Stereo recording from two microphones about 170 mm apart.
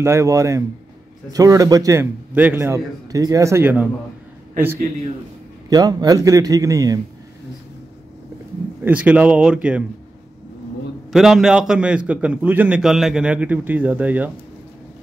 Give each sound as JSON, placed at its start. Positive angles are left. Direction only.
{"t": 0.0, "sound": "a man's voice", "side_deg": -15}
{"t": 5.7, "sound": "a man's voice", "side_deg": -20}
{"t": 8.8, "sound": "a man's voice", "side_deg": -10}
{"t": 11.1, "sound": "a man's voice", "side_deg": 0}